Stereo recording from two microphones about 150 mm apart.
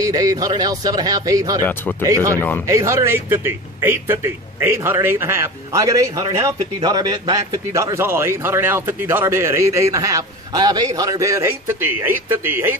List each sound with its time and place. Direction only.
0.0 s a man's voice: 20° right (ahead or behind)
1.6 s speech: 15° left (ahead or behind)
2.0 s a man's voice: 20° right (ahead or behind)
2.3 s speech: 15° left (ahead or behind)
2.6 s a man's voice: 20° right (ahead or behind)